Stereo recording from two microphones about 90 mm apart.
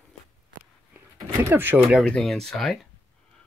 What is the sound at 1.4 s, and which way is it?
Speech, 25° right (ahead or behind).